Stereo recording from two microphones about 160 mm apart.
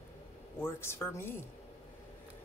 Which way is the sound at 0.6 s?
15° left (ahead or behind).